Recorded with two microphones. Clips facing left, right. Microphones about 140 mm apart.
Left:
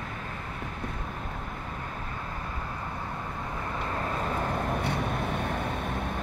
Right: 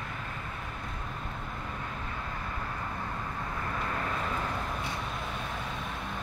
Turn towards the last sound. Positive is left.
turn(degrees=55)  # may be behind; listen again after turning